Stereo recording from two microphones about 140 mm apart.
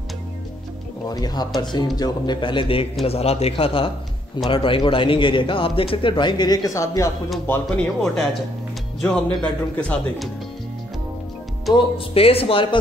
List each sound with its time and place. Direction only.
1.0 s a man's voice: 30° left (ahead or behind)
7.4 s speech: 5° left (ahead or behind)
11.7 s speech: 40° left (ahead or behind)